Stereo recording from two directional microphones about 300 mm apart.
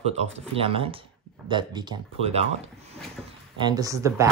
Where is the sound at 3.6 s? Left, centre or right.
Centre.